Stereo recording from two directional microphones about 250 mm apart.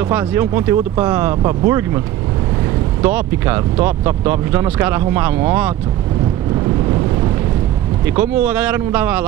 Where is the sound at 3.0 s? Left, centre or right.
Centre.